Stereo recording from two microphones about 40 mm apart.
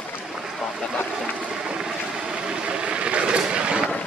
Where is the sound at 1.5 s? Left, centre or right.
Centre.